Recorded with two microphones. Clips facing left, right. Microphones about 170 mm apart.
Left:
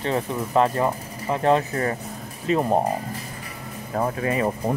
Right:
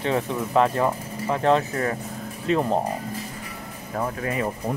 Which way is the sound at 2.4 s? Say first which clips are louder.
Left 1 dB; 5° left (ahead or behind).